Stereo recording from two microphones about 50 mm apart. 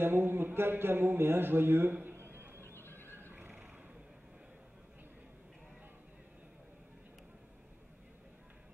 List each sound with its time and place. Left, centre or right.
0.0 s speech: right
2.0 s a sound: right
2.6 s neigh: left
3.2 s neigh: right